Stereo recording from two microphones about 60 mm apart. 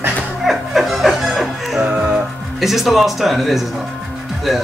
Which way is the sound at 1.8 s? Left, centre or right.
Centre.